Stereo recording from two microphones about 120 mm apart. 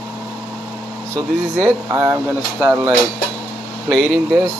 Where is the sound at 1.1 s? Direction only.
25° right (ahead or behind).